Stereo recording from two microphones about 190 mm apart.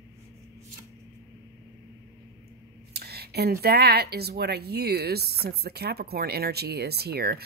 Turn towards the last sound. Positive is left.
turn(degrees=-55)  # may be behind; listen again after turning